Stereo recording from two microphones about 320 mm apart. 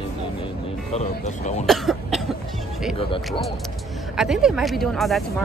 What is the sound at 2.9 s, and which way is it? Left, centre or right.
Speech, centre.